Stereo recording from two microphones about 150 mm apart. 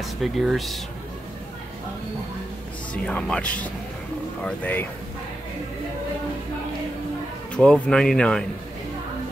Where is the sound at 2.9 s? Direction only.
10° left (ahead or behind).